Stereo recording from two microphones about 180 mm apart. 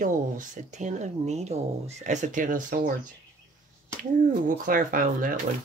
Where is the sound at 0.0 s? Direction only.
45° right (ahead or behind).